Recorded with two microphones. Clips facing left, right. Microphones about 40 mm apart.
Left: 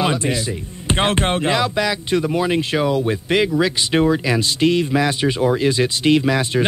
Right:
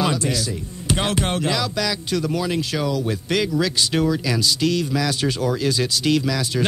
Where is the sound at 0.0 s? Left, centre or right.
Left.